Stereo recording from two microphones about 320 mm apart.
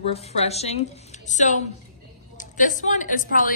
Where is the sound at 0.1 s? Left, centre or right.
Centre.